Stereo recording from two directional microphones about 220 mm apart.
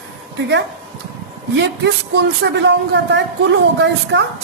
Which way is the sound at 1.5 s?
55° right (ahead or behind).